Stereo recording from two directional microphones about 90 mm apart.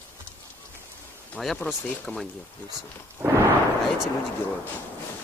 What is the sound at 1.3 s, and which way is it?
Speech, 5° left (ahead or behind).